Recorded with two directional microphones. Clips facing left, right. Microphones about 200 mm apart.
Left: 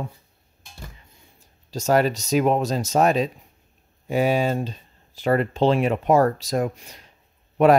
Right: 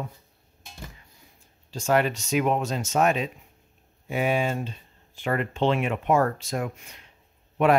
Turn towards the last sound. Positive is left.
turn(degrees=40)  # may be behind; listen again after turning